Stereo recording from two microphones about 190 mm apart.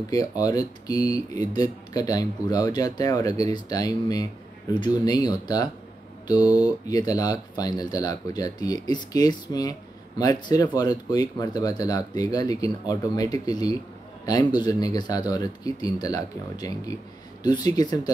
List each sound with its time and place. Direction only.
0.1 s a man's voice: 20° left (ahead or behind)